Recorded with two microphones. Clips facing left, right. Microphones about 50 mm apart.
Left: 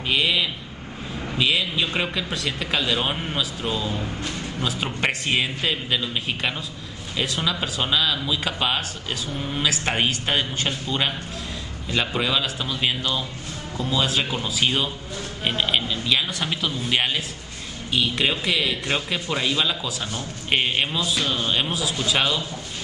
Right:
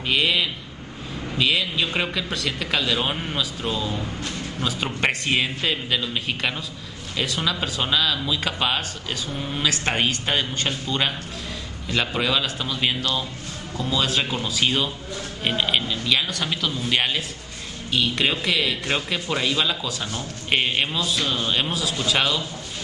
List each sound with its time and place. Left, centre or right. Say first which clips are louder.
0.1 s a man's voice: even; centre
13.7 s speech: even; centre
14.0 s a man's voice: even; centre